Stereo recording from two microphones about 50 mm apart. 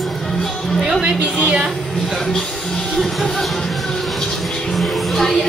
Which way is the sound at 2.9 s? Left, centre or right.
Centre.